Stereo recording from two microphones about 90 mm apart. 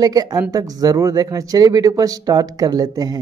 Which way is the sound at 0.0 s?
45° right (ahead or behind).